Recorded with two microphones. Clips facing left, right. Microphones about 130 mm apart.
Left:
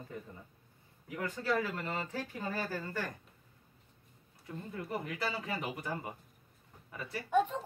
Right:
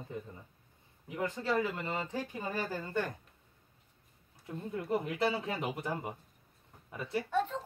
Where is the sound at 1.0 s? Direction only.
20° right (ahead or behind).